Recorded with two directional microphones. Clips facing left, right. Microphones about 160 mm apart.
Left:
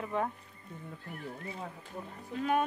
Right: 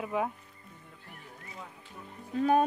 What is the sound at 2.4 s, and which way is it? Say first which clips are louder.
Speech: right 5 dB; 35° right (ahead or behind).